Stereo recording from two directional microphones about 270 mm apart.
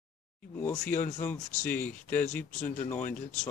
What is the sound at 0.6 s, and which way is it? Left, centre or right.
Speech, centre.